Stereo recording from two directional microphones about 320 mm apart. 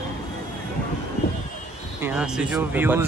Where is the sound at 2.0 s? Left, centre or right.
Centre.